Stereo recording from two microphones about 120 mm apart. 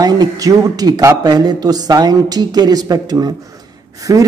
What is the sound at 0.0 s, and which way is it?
Speech, 35° right (ahead or behind).